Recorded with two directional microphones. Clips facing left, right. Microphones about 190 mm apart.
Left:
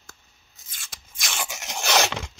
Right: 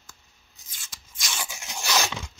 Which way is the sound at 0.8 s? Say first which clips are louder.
Left 2 dB; 60° left (ahead or behind).